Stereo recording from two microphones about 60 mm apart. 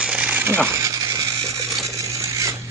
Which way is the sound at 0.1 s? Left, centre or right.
Right.